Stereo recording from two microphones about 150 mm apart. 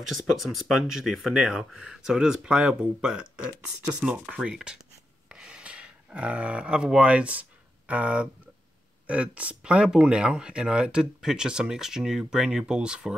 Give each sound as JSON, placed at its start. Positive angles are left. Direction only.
{"t": 0.1, "sound": "speech", "side_deg": 0}